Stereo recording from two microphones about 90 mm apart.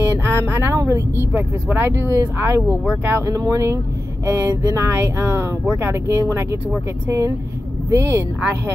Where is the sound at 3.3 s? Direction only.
35° right (ahead or behind).